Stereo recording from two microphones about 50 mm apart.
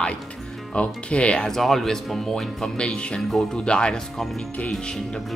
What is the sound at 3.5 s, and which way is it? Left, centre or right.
Speech, centre.